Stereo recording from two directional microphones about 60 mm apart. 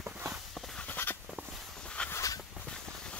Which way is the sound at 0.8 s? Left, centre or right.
Left.